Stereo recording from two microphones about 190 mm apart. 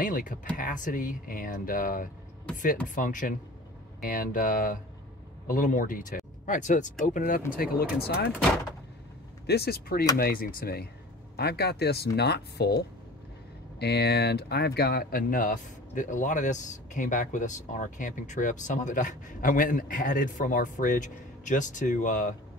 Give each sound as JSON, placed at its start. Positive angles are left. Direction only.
{"t": 0.0, "sound": "a man's voice", "side_deg": 45}
{"t": 9.5, "sound": "a man's voice", "side_deg": 55}